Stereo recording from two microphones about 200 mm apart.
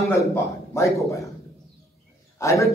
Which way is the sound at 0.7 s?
15° left (ahead or behind).